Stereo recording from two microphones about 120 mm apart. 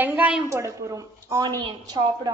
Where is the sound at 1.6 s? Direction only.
40° right (ahead or behind).